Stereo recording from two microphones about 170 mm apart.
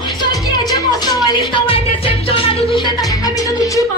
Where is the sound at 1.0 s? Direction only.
25° left (ahead or behind).